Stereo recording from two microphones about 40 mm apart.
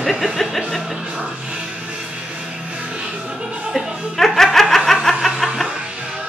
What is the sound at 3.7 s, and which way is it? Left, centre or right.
Music, centre.